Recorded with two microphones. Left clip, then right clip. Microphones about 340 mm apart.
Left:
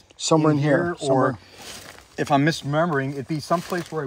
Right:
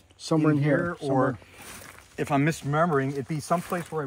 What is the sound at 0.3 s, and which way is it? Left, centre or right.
Speech, centre.